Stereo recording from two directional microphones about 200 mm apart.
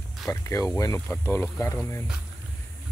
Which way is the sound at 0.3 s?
15° left (ahead or behind).